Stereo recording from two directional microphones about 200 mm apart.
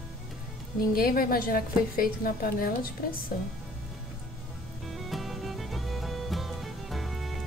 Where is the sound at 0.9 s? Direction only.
45° left (ahead or behind).